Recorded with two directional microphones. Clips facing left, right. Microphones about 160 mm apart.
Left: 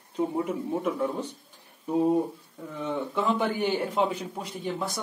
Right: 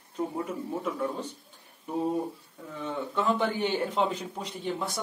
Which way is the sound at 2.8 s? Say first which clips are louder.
Left 1 dB; 10° left (ahead or behind).